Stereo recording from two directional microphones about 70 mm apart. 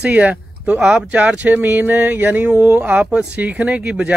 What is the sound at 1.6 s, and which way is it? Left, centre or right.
Speech, right.